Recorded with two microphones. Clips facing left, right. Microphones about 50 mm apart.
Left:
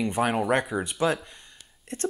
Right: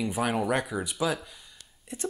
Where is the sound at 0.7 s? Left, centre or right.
Left.